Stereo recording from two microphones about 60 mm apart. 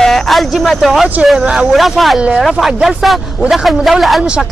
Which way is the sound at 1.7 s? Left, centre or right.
Centre.